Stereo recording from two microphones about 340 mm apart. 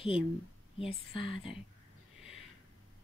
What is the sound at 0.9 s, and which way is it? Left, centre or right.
Speech, centre.